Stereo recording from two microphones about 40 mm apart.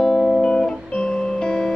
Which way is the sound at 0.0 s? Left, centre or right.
Centre.